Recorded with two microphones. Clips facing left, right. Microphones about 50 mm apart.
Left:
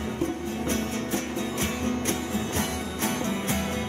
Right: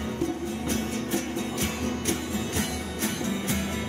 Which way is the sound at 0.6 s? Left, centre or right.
Left.